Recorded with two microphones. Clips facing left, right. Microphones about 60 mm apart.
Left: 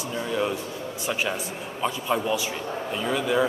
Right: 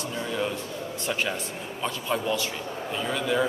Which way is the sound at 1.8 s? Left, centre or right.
Centre.